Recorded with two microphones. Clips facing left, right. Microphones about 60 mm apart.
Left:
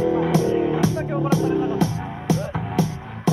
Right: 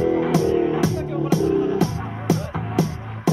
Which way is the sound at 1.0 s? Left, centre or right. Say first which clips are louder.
Left 1 dB; left.